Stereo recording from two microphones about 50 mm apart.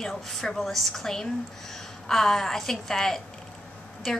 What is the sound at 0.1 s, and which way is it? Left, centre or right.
A woman's voice, centre.